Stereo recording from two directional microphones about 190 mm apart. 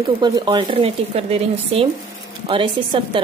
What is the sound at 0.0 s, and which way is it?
Speech, 25° right (ahead or behind).